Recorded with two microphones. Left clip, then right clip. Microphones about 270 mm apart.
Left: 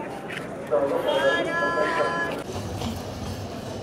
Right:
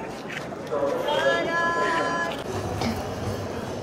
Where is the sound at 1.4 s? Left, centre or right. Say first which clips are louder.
Even; right.